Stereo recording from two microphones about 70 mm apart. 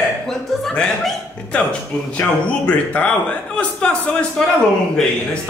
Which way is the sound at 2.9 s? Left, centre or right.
Centre.